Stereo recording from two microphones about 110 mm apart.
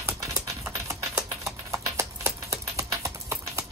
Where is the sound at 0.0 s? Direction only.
25° right (ahead or behind).